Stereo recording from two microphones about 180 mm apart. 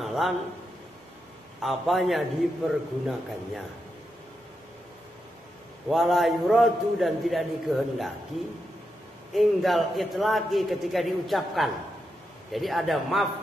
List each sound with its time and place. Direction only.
0.0 s a sound: centre (ahead or behind)
1.6 s a man's voice: centre (ahead or behind)
5.9 s a man's voice: centre (ahead or behind)
9.3 s a man's voice: centre (ahead or behind)